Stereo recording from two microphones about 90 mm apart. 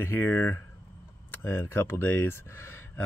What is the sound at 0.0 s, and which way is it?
Speech, 25° left (ahead or behind).